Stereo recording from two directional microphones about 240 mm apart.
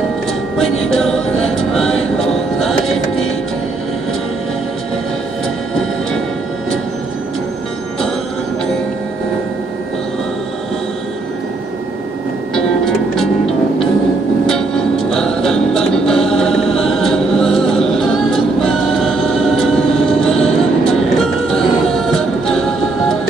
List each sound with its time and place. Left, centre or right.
0.6 s music: centre
12.8 s music: centre
14.4 s music: centre